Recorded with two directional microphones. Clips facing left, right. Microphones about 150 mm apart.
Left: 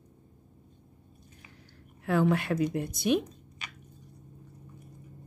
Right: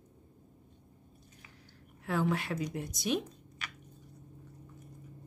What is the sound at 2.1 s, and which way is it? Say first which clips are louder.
A woman's voice: left 6 dB; 60° left (ahead or behind).